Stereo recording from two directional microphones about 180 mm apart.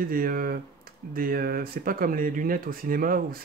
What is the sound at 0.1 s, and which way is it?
Speech, 55° right (ahead or behind).